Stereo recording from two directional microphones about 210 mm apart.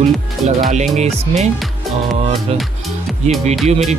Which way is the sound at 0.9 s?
35° right (ahead or behind).